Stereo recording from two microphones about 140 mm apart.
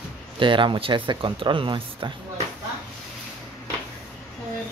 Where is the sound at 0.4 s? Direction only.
35° right (ahead or behind).